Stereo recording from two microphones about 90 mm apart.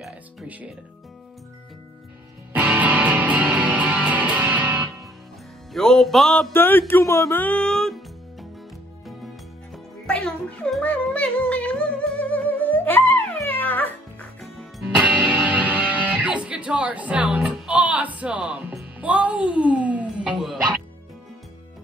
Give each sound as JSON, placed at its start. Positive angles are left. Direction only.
{"t": 2.5, "sound": "music", "side_deg": -15}
{"t": 5.7, "sound": "music", "side_deg": 5}
{"t": 6.5, "sound": "speech", "side_deg": 25}
{"t": 7.3, "sound": "music", "side_deg": 15}
{"t": 10.1, "sound": "music", "side_deg": 10}
{"t": 14.4, "sound": "music", "side_deg": 0}
{"t": 15.3, "sound": "music", "side_deg": -15}
{"t": 17.6, "sound": "speech", "side_deg": -15}
{"t": 18.9, "sound": "music", "side_deg": -15}